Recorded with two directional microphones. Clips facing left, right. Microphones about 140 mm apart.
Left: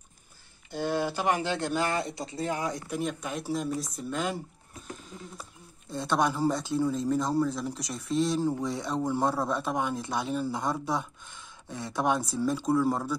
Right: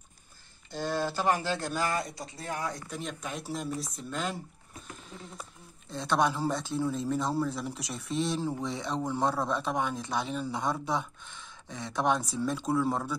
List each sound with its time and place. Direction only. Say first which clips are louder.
0.7 s speech: left 2 dB; 15° left (ahead or behind)
2.9 s speech: left 5 dB; 5° left (ahead or behind)